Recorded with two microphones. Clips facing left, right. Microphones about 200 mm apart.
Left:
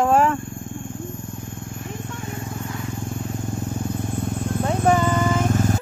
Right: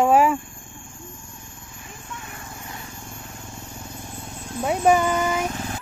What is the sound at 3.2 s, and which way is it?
Vehicle, 55° left (ahead or behind).